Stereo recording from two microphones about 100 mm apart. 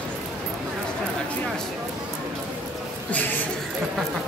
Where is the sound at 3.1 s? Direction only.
15° left (ahead or behind).